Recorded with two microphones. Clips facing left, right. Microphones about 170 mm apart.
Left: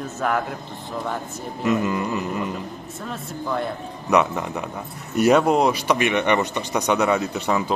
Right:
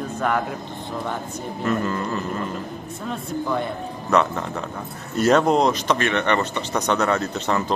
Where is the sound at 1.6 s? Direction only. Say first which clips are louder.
Left 2 dB; 15° left (ahead or behind).